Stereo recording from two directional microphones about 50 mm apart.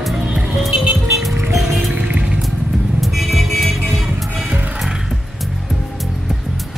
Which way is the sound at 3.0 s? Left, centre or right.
Centre.